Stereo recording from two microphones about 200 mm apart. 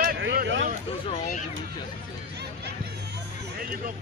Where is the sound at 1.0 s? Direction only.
40° left (ahead or behind).